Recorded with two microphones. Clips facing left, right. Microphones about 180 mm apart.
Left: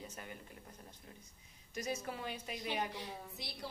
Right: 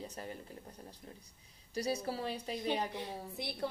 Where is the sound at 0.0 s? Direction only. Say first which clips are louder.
Right 5 dB; 35° right (ahead or behind).